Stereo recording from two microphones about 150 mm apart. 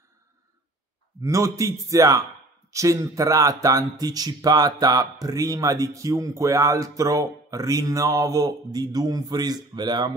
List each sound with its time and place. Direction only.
1.2 s speech: 20° right (ahead or behind)